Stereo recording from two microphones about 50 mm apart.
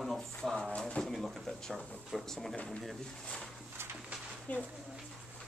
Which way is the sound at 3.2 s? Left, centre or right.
Centre.